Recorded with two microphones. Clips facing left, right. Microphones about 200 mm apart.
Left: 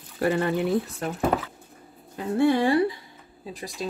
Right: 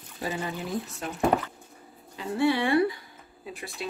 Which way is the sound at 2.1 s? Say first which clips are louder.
Left 4 dB; 50° left (ahead or behind).